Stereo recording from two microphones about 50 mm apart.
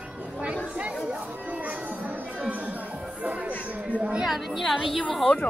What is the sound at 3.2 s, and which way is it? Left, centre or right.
Music, right.